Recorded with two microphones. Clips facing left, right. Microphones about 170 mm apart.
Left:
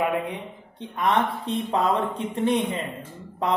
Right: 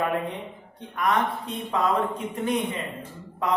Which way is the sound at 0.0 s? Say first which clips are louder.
Left 1 dB; 15° left (ahead or behind).